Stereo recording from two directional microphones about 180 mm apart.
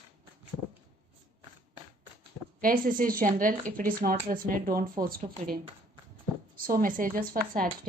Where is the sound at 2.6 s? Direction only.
50° right (ahead or behind).